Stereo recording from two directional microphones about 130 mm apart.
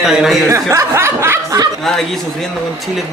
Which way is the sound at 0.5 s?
25° right (ahead or behind).